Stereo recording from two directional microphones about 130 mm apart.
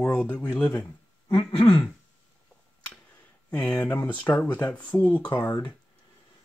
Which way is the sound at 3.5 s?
10° left (ahead or behind).